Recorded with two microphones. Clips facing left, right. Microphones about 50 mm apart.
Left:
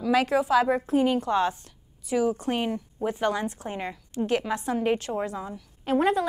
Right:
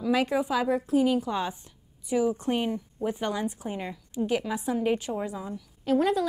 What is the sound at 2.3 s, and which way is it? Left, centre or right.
Speech, left.